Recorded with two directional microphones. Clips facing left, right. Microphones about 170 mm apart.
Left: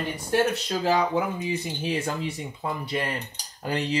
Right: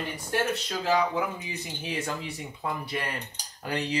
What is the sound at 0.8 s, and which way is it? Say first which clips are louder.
Speech: left 2 dB; 30° left (ahead or behind).